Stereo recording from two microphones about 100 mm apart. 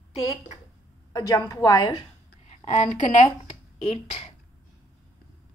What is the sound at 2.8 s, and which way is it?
Speech, 80° left.